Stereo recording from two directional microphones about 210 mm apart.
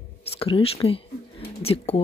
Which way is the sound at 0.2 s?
25° left (ahead or behind).